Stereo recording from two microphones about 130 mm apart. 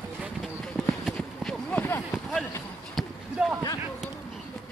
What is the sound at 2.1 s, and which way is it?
Run, centre (ahead or behind).